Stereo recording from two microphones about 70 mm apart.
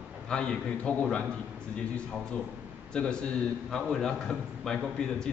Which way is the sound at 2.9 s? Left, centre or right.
Centre.